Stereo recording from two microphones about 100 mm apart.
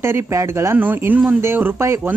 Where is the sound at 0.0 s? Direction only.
25° right (ahead or behind).